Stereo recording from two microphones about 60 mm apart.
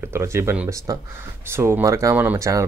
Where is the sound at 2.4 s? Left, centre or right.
Right.